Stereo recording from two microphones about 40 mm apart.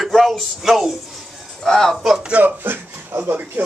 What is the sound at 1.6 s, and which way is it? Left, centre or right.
Speech, centre.